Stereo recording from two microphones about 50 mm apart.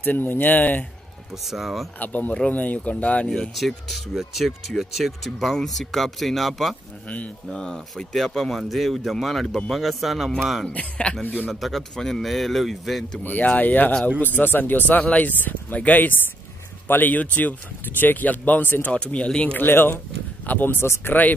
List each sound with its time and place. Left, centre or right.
0.0 s speech: left
1.3 s speech: centre
2.0 s speech: left
3.5 s speech: centre
5.5 s speech: centre
10.7 s speech: left
11.6 s speech: centre
13.2 s speech: left
18.9 s speech: left
19.5 s speech: left
21.1 s speech: left